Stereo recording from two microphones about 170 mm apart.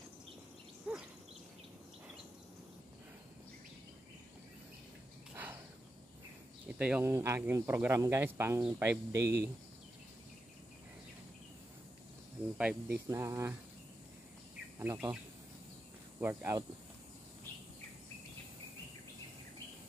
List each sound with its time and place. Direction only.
0.9 s a sound: 5° right (ahead or behind)
5.3 s a sound: 10° right (ahead or behind)
6.8 s speech: 10° right (ahead or behind)
12.5 s speech: 5° right (ahead or behind)
13.1 s speech: 15° right (ahead or behind)
14.8 s speech: 10° right (ahead or behind)
16.2 s speech: 15° right (ahead or behind)